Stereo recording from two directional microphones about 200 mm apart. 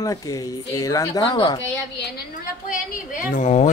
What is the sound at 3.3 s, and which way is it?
Speech, 35° left (ahead or behind).